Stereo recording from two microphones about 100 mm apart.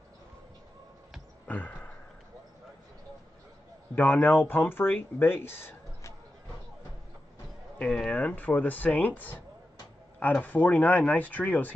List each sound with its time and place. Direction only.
1.5 s a sound: 15° left (ahead or behind)
3.9 s speech: 20° left (ahead or behind)
7.8 s speech: 10° left (ahead or behind)